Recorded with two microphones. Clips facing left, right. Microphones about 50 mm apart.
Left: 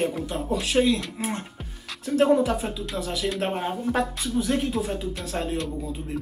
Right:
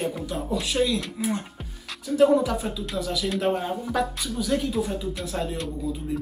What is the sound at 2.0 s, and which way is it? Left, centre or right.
Speech, left.